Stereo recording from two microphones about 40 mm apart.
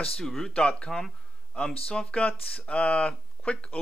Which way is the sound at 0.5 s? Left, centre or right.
Left.